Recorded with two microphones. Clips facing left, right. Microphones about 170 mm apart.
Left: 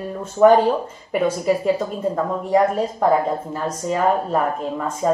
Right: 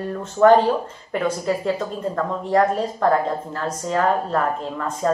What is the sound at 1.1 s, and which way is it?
A woman's voice, 10° left (ahead or behind).